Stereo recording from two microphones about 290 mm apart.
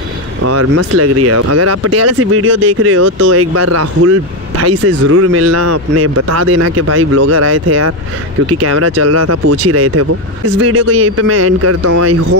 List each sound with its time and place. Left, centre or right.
0.4 s speech: right
3.3 s speech: right